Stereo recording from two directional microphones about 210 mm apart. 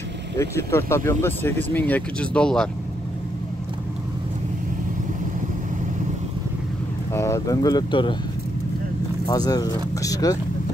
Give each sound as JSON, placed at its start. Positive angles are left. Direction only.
{"t": 0.4, "sound": "speech", "side_deg": 10}
{"t": 7.2, "sound": "speech", "side_deg": 15}
{"t": 9.3, "sound": "speech", "side_deg": 15}